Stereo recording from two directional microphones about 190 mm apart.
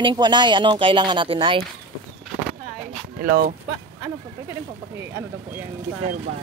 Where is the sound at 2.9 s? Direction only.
50° right (ahead or behind).